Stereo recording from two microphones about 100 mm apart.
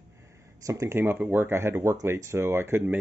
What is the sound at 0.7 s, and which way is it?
Speech, 30° right (ahead or behind).